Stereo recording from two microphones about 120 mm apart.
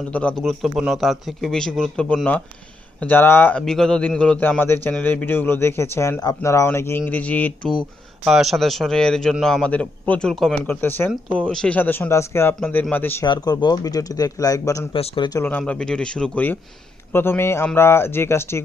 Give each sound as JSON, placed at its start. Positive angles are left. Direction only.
{"t": 0.1, "sound": "a man's voice", "side_deg": 10}
{"t": 3.6, "sound": "a man's voice", "side_deg": 5}
{"t": 8.3, "sound": "a man's voice", "side_deg": 0}
{"t": 10.7, "sound": "a man's voice", "side_deg": 15}
{"t": 13.2, "sound": "speech", "side_deg": 35}
{"t": 15.4, "sound": "a man's voice", "side_deg": 15}